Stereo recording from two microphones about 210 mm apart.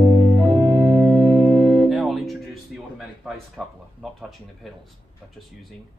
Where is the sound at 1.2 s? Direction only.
15° right (ahead or behind).